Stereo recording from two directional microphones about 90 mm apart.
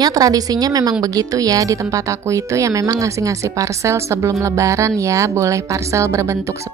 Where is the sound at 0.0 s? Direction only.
45° right (ahead or behind).